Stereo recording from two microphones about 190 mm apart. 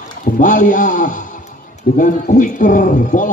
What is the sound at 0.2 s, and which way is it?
Speech, 40° left (ahead or behind).